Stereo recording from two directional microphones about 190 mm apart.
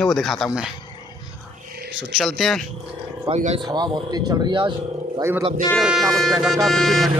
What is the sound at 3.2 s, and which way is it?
Speech, 35° right (ahead or behind).